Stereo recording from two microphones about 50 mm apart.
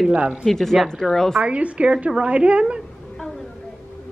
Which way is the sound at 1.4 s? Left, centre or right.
Right.